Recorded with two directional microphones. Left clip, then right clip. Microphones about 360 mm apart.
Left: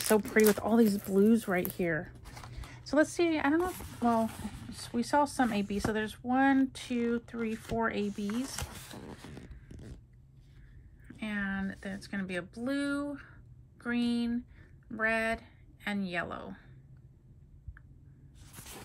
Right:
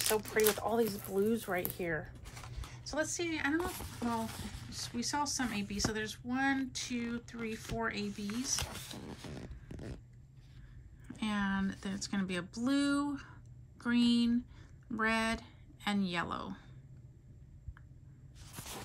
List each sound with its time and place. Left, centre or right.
0.3 s speech: left; by 9.9 s centre
11.1 s speech: centre
18.5 s a sound: centre